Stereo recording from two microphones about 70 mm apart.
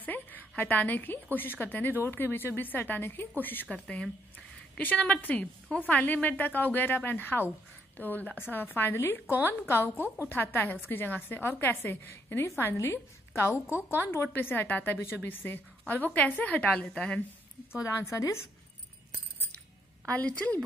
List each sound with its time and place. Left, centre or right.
0.0 s a woman's voice: left
3.7 s a woman's voice: centre
17.8 s a woman's voice: left
20.1 s a woman's voice: left